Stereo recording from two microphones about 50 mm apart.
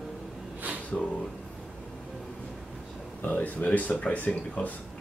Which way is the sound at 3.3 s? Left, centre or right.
Left.